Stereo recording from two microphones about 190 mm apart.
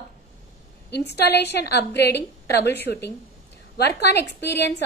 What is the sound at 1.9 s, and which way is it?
Speech, 60° left (ahead or behind).